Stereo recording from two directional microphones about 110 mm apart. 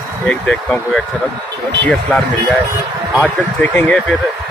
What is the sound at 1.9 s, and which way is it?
Speech, 10° left (ahead or behind).